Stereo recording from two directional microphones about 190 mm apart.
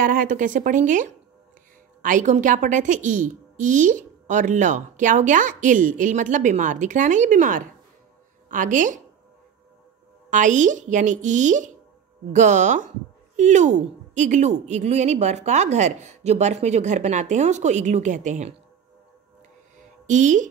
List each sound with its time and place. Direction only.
0.0 s a woman's voice: 45° right (ahead or behind)
10.3 s a woman's voice: 40° right (ahead or behind)
20.1 s a woman's voice: 40° right (ahead or behind)